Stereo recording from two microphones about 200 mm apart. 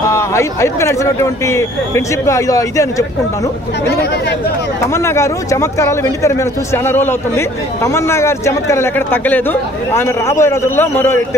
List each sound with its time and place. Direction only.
0.1 s speech: 15° left (ahead or behind)
4.0 s speech: 55° left (ahead or behind)
4.7 s speech: 15° left (ahead or behind)